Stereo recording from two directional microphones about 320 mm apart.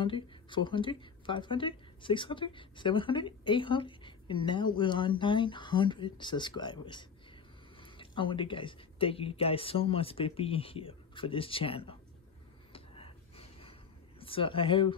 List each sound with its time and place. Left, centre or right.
0.0 s speech: centre
12.7 s a sound: centre
14.2 s speech: centre